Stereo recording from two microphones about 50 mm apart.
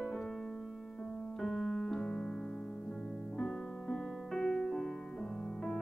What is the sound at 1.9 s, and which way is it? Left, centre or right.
Piano, centre.